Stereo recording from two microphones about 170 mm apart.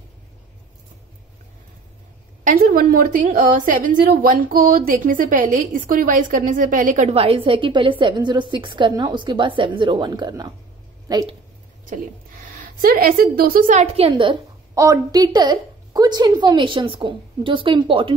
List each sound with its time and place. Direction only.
2.4 s a woman's voice: 55° right (ahead or behind); by 11.2 s 20° right (ahead or behind)
12.8 s a woman's voice: 60° right (ahead or behind); by 14.4 s 30° right (ahead or behind)
14.8 s a woman's voice: 20° right (ahead or behind)